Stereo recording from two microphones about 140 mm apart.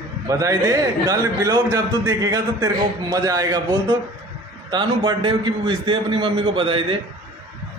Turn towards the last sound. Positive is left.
turn(degrees=-40)  # may be behind; listen again after turning